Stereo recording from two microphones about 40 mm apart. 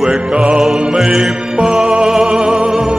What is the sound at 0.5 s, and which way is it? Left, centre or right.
Music, centre.